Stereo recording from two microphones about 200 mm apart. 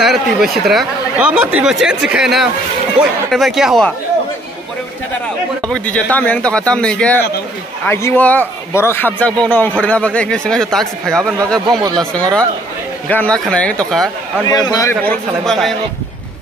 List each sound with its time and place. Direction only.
0.0 s speech: centre (ahead or behind)
5.7 s a man's voice: 5° left (ahead or behind)
11.6 s speech: 20° right (ahead or behind)
12.0 s speech: 5° left (ahead or behind)
14.5 s a man's voice: 20° left (ahead or behind); by 15.7 s centre (ahead or behind)